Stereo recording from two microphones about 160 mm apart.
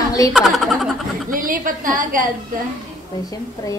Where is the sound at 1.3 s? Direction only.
60° right (ahead or behind).